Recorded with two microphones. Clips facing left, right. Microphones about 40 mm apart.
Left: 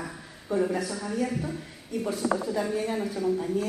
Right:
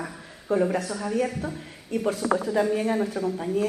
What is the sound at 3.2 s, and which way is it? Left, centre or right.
Speech, right.